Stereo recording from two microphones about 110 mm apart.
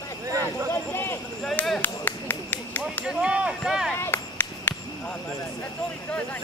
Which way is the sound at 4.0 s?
20° left (ahead or behind).